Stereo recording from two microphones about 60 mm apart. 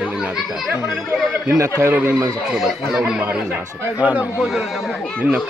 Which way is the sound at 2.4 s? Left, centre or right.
Centre.